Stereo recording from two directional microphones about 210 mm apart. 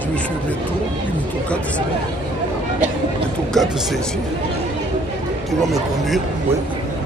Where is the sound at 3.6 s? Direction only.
Centre (ahead or behind).